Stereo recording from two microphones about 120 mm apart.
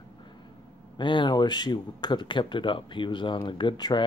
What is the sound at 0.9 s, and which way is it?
Speech, 40° left (ahead or behind).